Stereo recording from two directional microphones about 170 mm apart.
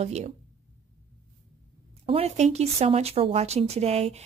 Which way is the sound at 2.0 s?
35° right (ahead or behind).